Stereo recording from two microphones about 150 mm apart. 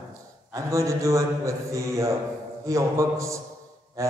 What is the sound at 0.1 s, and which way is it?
A man's voice, 20° right (ahead or behind).